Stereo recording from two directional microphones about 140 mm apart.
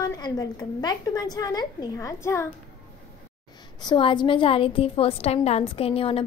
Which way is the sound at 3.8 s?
35° left (ahead or behind).